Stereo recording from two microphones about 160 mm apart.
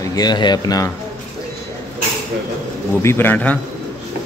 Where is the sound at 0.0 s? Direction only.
25° left (ahead or behind).